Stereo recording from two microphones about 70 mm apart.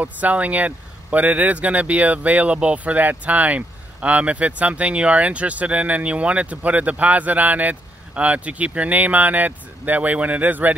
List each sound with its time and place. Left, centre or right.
0.0 s speech: right